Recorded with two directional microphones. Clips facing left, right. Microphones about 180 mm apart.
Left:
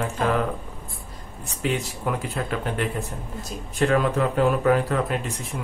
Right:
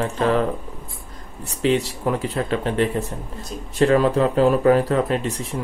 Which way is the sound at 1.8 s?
35° right (ahead or behind).